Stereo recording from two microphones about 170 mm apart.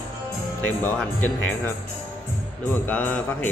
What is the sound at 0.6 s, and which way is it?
Speech, 10° left (ahead or behind).